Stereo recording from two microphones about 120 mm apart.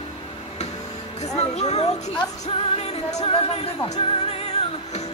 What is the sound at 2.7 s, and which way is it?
Music, 55° left (ahead or behind).